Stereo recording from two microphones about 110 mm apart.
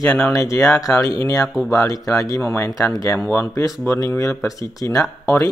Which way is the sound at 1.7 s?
30° left (ahead or behind).